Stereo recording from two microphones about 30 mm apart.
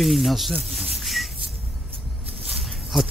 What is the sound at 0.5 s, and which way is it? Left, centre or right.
Speech, right.